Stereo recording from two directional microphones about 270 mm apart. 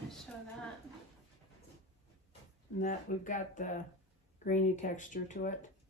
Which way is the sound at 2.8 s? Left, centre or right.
Left.